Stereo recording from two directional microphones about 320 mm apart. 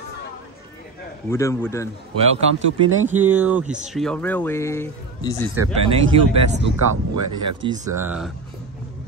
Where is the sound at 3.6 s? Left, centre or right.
Right.